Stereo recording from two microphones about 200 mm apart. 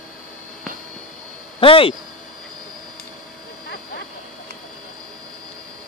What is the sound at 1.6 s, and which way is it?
Speech, 25° left (ahead or behind).